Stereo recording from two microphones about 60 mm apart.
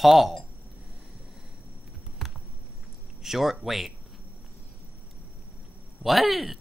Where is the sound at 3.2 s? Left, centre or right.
Centre.